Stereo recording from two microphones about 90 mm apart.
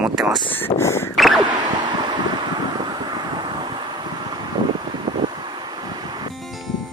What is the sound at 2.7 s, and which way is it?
Vehicle, 55° right (ahead or behind).